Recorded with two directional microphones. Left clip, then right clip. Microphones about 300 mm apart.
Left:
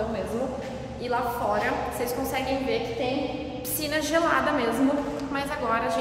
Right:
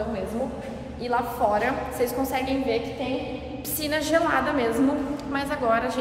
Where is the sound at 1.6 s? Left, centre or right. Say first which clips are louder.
Right 2 dB; centre.